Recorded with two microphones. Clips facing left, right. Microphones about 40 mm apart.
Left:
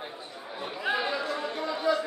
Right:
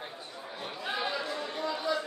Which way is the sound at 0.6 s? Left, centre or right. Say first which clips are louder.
Left 5 dB; centre.